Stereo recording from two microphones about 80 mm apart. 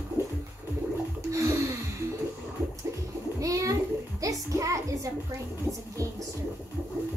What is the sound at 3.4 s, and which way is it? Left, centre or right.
A woman's voice, right.